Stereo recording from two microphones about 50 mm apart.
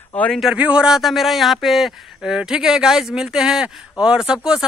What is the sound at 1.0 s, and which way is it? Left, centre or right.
A man's voice, centre.